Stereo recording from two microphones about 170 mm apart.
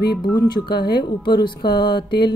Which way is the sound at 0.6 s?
70° left (ahead or behind).